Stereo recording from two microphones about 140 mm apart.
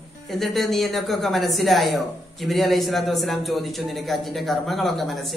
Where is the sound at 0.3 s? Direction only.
Centre (ahead or behind).